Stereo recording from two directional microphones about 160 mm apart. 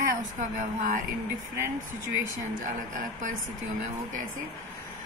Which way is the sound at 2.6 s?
55° right (ahead or behind).